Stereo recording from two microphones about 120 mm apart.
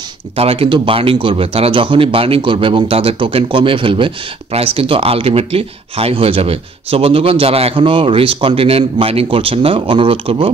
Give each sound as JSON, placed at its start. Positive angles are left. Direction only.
{"t": 0.4, "sound": "a man's voice", "side_deg": -55}